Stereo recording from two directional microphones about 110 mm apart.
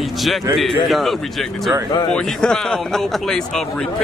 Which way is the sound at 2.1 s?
5° left (ahead or behind).